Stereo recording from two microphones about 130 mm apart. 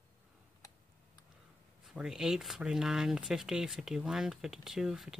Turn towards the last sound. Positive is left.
turn(degrees=-5)  # may be behind; listen again after turning